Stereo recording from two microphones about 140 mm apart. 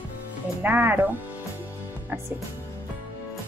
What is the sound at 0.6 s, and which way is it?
Speech, 15° right (ahead or behind).